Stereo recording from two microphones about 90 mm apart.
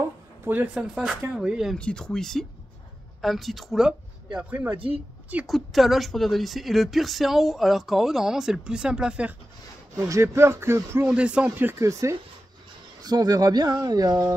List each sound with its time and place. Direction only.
0.7 s a woman's voice: centre (ahead or behind)
1.8 s speech: 10° left (ahead or behind); by 4.6 s 10° right (ahead or behind)
5.5 s a woman's voice: centre (ahead or behind)
9.9 s speech: 35° right (ahead or behind)
11.1 s speech: 10° right (ahead or behind)
11.8 s speech: 35° right (ahead or behind)
13.0 s speech: 45° right (ahead or behind)